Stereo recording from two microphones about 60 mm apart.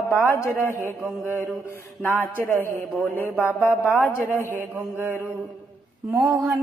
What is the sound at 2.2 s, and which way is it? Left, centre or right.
Speech, left.